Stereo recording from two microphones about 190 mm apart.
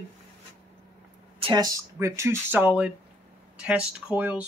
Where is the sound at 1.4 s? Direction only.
20° right (ahead or behind).